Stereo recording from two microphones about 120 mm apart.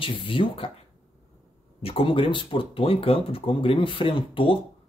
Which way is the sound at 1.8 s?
50° left (ahead or behind).